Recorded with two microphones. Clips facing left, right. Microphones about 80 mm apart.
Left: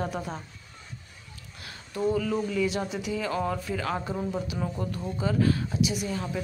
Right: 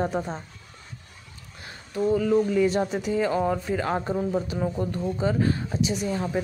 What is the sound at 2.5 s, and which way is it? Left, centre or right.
Speech, right.